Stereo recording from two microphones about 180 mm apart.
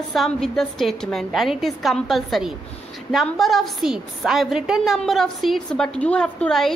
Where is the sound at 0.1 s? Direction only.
Centre (ahead or behind).